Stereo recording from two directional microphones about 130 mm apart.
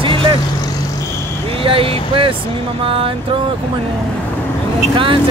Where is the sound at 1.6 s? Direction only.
45° right (ahead or behind).